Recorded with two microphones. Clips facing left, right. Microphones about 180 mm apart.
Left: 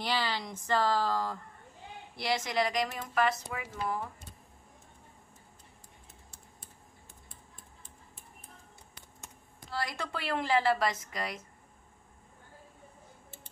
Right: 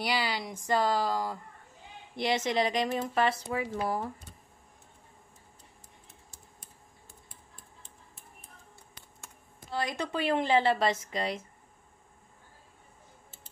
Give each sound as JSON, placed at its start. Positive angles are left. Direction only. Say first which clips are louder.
{"t": 0.0, "sound": "speech", "louder": "right 1 dB", "side_deg": -10}
{"t": 9.7, "sound": "speech", "louder": "right 4 dB", "side_deg": -20}